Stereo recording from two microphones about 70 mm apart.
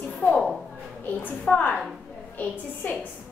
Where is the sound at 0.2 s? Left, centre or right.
Left.